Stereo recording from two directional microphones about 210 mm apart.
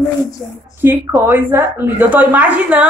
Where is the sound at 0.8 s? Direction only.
10° right (ahead or behind).